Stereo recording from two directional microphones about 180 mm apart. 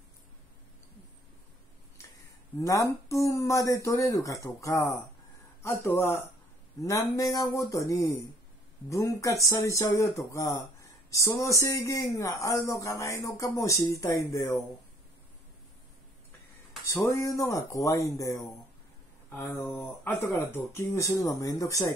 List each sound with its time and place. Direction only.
2.6 s speech: 15° left (ahead or behind)
16.8 s speech: 15° left (ahead or behind)